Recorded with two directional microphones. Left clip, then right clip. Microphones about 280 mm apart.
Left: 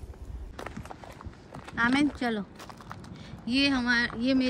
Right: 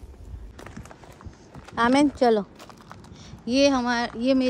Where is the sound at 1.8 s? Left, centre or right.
Centre.